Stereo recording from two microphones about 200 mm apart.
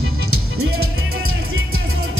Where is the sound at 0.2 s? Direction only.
90° right.